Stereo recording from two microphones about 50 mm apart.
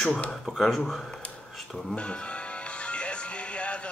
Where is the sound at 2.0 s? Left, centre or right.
Left.